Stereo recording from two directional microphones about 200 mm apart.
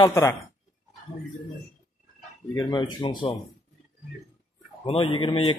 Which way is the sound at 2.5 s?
20° left (ahead or behind).